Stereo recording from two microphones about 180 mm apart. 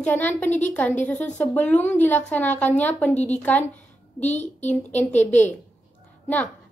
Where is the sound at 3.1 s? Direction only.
40° left (ahead or behind).